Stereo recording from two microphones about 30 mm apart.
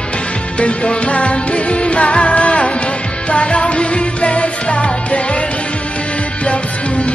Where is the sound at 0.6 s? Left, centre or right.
Left.